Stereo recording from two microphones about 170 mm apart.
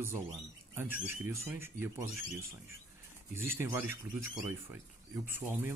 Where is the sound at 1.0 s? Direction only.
15° right (ahead or behind).